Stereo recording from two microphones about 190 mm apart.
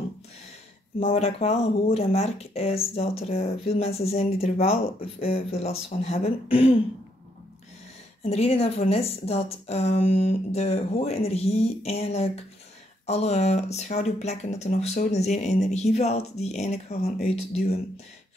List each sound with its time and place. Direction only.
0.9 s speech: 30° left (ahead or behind)
8.3 s speech: 30° left (ahead or behind)